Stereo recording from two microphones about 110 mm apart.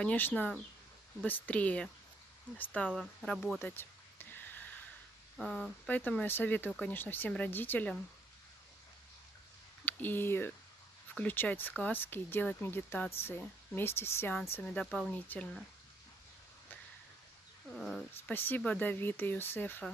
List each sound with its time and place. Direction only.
0.0 s speech: 15° left (ahead or behind)
2.9 s speech: centre (ahead or behind)
3.5 s a sound: 20° left (ahead or behind)
5.4 s speech: 10° left (ahead or behind)
9.8 s speech: 20° left (ahead or behind)
14.6 s speech: 10° left (ahead or behind)
17.7 s speech: centre (ahead or behind)
18.2 s speech: 20° left (ahead or behind)